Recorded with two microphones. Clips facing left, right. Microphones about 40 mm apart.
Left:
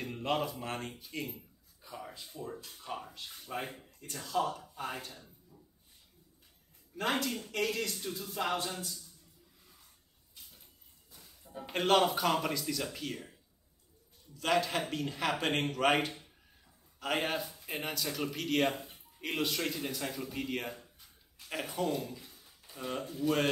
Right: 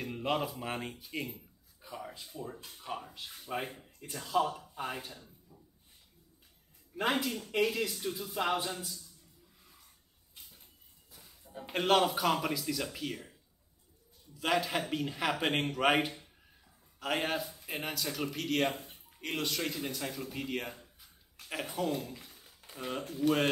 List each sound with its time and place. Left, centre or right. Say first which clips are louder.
0.0 s speech: even; centre
7.0 s speech: right 1 dB; centre
7.2 s speech: right 1 dB; centre
7.5 s speech: right 4 dB; centre
11.1 s a man's voice: even; centre
14.3 s speech: left 1 dB; centre
23.2 s speech: right 2 dB; right